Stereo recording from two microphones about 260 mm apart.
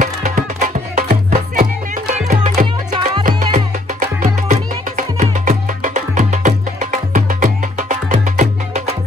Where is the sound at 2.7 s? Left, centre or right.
Centre.